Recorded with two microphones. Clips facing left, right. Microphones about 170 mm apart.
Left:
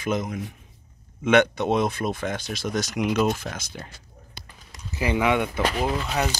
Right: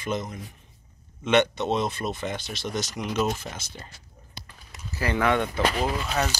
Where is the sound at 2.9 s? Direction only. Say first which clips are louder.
Left 7 dB; 10° left (ahead or behind).